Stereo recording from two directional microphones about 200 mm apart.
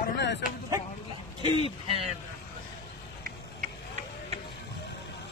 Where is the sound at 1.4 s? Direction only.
25° right (ahead or behind).